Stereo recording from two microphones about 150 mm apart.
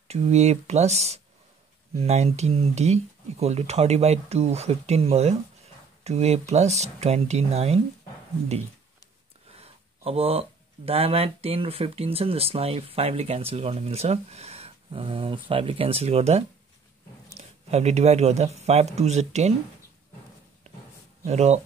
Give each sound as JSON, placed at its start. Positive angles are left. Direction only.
{"t": 0.1, "sound": "speech", "side_deg": -45}
{"t": 9.5, "sound": "a sound", "side_deg": -40}
{"t": 10.9, "sound": "speech", "side_deg": -40}
{"t": 21.2, "sound": "speech", "side_deg": -45}